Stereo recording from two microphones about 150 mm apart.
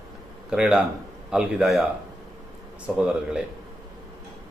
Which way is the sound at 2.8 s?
5° right (ahead or behind).